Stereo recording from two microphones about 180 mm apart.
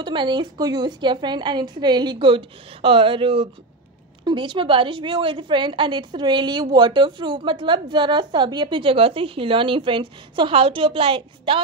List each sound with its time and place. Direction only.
0.0 s a woman's voice: 25° right (ahead or behind)